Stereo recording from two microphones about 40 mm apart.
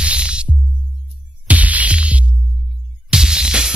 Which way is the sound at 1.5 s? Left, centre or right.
Right.